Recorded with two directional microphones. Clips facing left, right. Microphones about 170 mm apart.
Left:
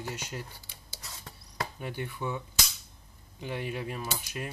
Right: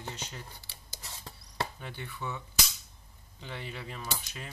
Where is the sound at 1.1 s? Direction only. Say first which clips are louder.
Even; 30° right (ahead or behind).